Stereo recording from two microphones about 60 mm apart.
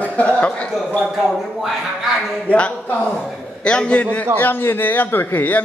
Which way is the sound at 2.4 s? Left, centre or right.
Left.